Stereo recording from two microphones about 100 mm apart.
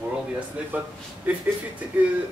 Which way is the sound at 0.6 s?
10° right (ahead or behind).